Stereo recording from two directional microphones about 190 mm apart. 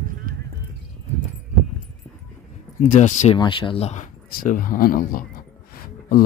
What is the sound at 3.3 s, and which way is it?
Speech, 25° left (ahead or behind).